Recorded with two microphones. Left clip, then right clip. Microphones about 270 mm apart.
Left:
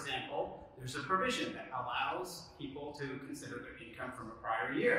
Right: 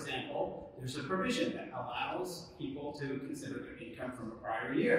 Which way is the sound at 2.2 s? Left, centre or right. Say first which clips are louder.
Right 3 dB; left.